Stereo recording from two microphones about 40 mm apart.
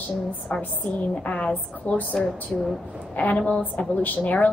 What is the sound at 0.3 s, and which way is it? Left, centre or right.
A woman's voice, left.